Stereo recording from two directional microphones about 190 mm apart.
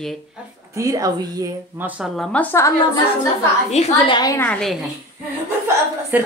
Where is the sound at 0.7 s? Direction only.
15° right (ahead or behind); by 3.0 s 15° left (ahead or behind).